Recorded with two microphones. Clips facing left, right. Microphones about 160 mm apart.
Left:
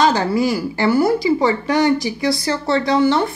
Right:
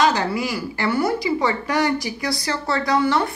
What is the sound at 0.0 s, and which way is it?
Speech, 30° left (ahead or behind).